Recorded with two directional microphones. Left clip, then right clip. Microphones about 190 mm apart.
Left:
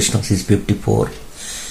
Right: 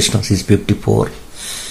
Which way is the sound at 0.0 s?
25° right (ahead or behind).